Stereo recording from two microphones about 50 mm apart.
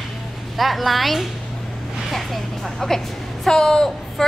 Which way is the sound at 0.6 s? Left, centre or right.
Centre.